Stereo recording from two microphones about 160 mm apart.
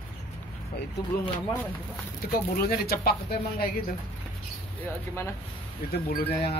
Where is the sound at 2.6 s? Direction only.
75° left (ahead or behind).